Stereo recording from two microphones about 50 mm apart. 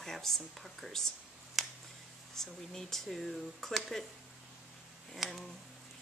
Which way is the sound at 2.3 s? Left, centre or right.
Centre.